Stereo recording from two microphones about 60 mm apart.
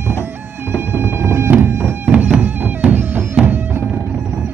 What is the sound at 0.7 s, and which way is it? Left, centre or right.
Music, right.